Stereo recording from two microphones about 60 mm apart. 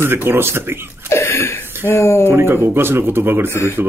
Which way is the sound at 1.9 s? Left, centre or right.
Left.